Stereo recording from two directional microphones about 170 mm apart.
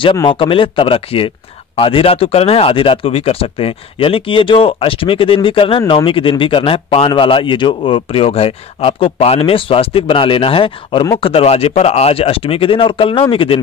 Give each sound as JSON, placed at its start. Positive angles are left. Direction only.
{"t": 0.0, "sound": "speech", "side_deg": 30}